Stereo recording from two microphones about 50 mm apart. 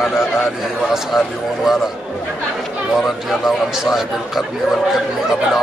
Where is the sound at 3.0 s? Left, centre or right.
Centre.